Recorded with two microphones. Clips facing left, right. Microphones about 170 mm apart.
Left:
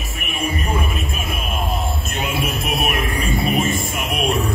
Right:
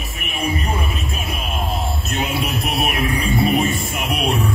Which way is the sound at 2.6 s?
45° left (ahead or behind).